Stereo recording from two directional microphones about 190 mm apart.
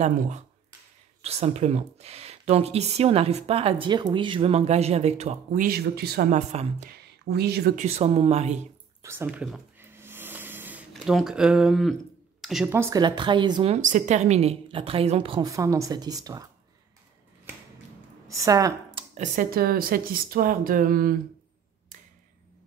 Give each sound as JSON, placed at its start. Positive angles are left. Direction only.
{"t": 1.2, "sound": "speech", "side_deg": -35}
{"t": 6.3, "sound": "speech", "side_deg": -35}
{"t": 7.2, "sound": "speech", "side_deg": -60}
{"t": 7.7, "sound": "speech", "side_deg": -35}
{"t": 9.0, "sound": "a sound", "side_deg": -10}
{"t": 10.9, "sound": "speech", "side_deg": 0}
{"t": 12.7, "sound": "a woman's voice", "side_deg": -15}
{"t": 13.7, "sound": "a woman's voice", "side_deg": -40}
{"t": 18.3, "sound": "a woman's voice", "side_deg": -15}
{"t": 18.9, "sound": "speech", "side_deg": -40}